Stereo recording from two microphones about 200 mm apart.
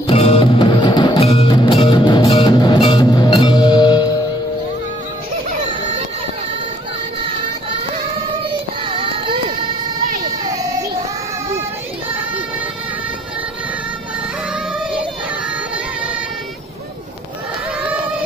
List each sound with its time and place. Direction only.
0.0 s music: 30° left (ahead or behind)
8.8 s child singing: 25° right (ahead or behind)
10.4 s baby cry: 20° right (ahead or behind)